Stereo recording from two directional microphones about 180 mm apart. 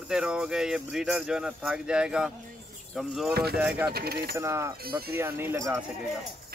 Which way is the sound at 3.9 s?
60° right (ahead or behind).